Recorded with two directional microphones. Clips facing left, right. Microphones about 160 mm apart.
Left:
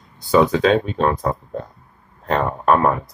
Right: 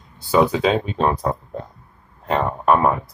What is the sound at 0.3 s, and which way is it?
Speech, 10° right (ahead or behind).